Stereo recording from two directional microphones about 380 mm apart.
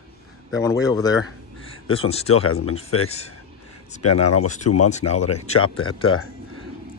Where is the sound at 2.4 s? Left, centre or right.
Left.